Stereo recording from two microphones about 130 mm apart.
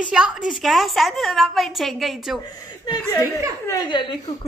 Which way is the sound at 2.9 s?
25° left (ahead or behind).